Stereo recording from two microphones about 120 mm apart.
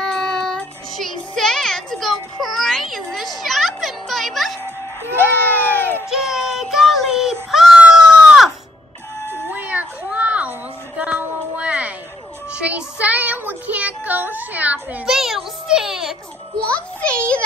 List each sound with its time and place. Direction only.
0.0 s child singing: 5° left (ahead or behind)
5.2 s baby cry: 15° left (ahead or behind)
6.0 s child singing: 5° right (ahead or behind)
9.5 s a sound: 15° right (ahead or behind)
11.0 s music: 10° right (ahead or behind)
12.5 s child singing: 10° right (ahead or behind)
16.5 s a child's voice: 10° left (ahead or behind)